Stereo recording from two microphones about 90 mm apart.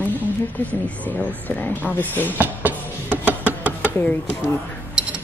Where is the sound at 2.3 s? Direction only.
20° right (ahead or behind).